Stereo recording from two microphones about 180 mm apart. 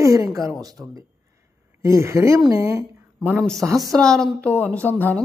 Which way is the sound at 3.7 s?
20° right (ahead or behind).